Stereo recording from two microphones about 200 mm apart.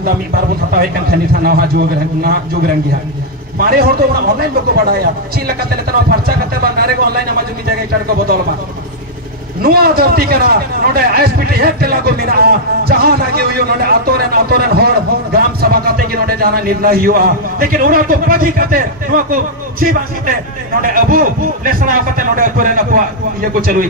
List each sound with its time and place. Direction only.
0.7 s a man's voice: 50° right (ahead or behind)
9.6 s a man's voice: 50° right (ahead or behind)